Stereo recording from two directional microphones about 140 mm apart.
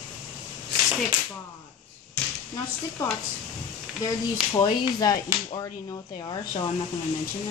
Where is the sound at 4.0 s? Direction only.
30° left (ahead or behind).